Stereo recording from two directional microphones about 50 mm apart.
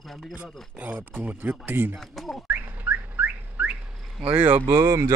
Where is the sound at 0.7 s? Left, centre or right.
Right.